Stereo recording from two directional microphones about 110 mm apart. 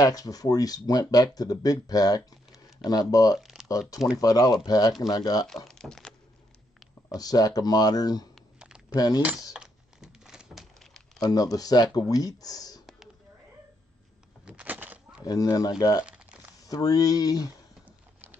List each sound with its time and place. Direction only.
0.0 s speech: 35° left (ahead or behind)
3.3 s typing: 5° right (ahead or behind)
4.2 s speech: 35° left (ahead or behind)
5.7 s a sound: 5° left (ahead or behind)
7.2 s speech: 35° left (ahead or behind)
8.5 s a sound: 10° right (ahead or behind)
8.9 s speech: 35° left (ahead or behind)
9.5 s crumpling: 5° right (ahead or behind)
11.2 s speech: 35° left (ahead or behind)
14.4 s a sound: 15° right (ahead or behind)
15.2 s speech: 35° left (ahead or behind)
16.1 s crumpling: 10° right (ahead or behind)
16.6 s speech: 35° left (ahead or behind)
17.8 s a sound: 15° right (ahead or behind)